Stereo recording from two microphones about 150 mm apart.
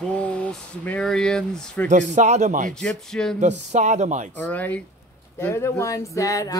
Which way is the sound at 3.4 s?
55° right (ahead or behind).